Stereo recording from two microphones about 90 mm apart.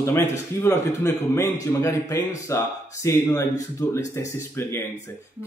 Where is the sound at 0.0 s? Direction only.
30° left (ahead or behind).